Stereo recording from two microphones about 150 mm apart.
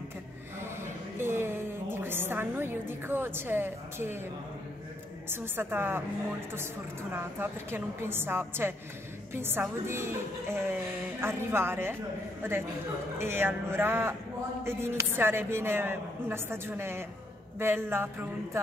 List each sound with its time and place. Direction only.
1.1 s a sound: 15° right (ahead or behind)
5.3 s a woman's voice: 15° right (ahead or behind)
13.2 s a woman's voice: 15° right (ahead or behind)